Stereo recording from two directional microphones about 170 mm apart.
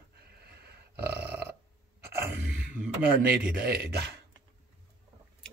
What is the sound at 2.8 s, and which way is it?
Speech, 10° right (ahead or behind).